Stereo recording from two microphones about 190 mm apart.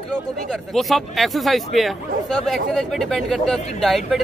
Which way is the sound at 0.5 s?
Centre (ahead or behind).